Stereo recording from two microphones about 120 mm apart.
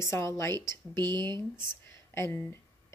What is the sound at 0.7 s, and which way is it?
Speech, 40° right (ahead or behind).